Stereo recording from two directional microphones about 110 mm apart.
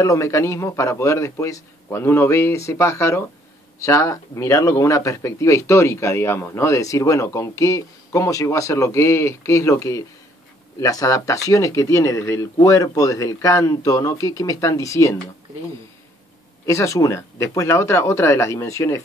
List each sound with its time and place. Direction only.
0.0 s speech: 30° left (ahead or behind)
16.6 s speech: 25° left (ahead or behind)